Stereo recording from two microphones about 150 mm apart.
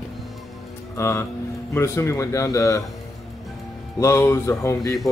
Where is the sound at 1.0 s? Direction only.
20° left (ahead or behind).